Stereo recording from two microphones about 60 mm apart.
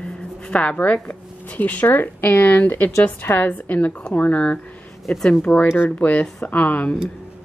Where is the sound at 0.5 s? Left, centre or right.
Left.